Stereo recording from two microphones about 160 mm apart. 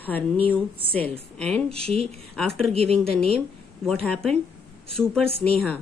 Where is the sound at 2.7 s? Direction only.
40° right (ahead or behind).